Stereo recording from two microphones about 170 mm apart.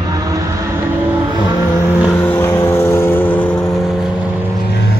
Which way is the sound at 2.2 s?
15° left (ahead or behind).